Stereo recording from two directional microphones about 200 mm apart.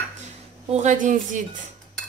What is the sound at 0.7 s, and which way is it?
Speech, 35° right (ahead or behind).